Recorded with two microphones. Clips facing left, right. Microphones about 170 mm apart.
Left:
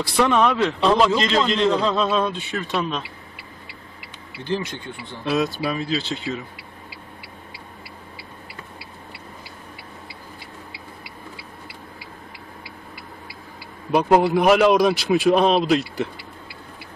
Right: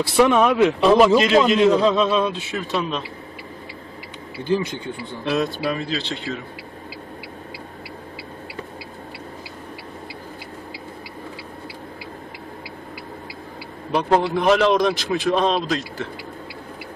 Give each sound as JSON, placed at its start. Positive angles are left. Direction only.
{"t": 0.1, "sound": "a man's voice", "side_deg": -10}
{"t": 4.5, "sound": "a man's voice", "side_deg": -15}
{"t": 5.2, "sound": "speech", "side_deg": 5}
{"t": 13.9, "sound": "speech", "side_deg": 10}